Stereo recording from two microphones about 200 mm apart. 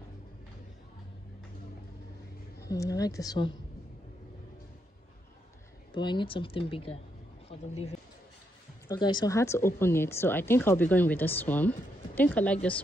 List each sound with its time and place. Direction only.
2.6 s speech: 15° left (ahead or behind)
5.9 s speech: 25° left (ahead or behind)
8.8 s speech: 20° left (ahead or behind)